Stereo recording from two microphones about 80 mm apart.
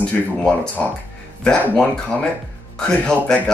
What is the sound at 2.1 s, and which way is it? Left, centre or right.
Speech, left.